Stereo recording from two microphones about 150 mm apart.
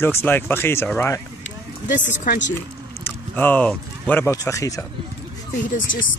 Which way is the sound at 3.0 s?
10° left (ahead or behind).